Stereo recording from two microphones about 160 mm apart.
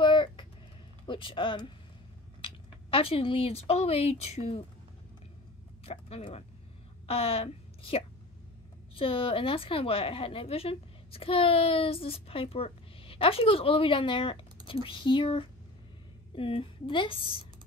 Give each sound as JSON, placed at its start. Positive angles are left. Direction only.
{"t": 0.0, "sound": "a sound", "side_deg": 30}
{"t": 1.0, "sound": "a woman's voice", "side_deg": 30}
{"t": 5.9, "sound": "a woman's voice", "side_deg": 40}